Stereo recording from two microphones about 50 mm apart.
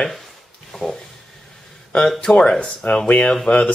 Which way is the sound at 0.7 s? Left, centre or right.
Centre.